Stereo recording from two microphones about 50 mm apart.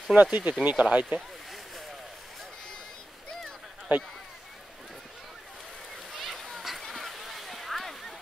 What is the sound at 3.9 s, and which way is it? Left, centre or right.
Speech, right.